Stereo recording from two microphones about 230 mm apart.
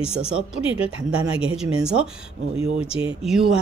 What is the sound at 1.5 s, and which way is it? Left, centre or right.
Speech, centre.